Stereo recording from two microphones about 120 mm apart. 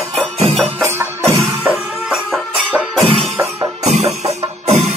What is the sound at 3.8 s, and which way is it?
Music, 65° right (ahead or behind).